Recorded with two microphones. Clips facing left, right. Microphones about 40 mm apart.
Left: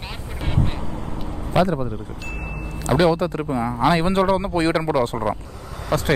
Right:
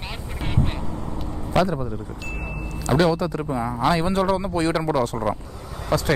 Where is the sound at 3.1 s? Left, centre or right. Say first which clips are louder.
Left 2 dB; left.